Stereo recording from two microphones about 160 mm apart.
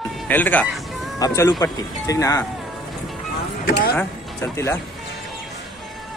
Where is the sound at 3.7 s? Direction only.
75° left (ahead or behind).